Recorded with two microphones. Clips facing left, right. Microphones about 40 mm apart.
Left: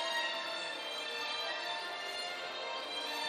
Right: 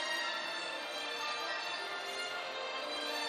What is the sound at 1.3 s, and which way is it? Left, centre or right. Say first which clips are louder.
Music: right 1 dB; left.